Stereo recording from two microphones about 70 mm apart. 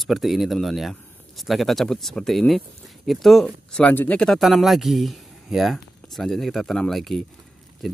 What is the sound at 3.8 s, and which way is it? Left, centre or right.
Speech, left.